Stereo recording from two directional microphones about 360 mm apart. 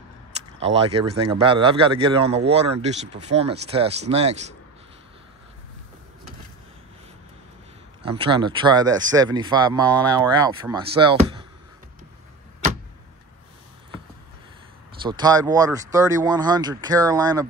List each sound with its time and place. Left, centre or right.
0.7 s a man's voice: centre
8.0 s a man's voice: centre
15.0 s a man's voice: centre